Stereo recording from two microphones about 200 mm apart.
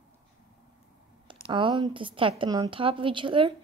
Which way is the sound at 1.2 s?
25° right (ahead or behind).